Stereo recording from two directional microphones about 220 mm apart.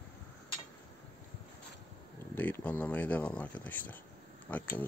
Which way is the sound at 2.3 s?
10° left (ahead or behind).